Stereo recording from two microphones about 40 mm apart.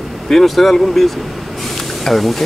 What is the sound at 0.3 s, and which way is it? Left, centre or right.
Speech, centre.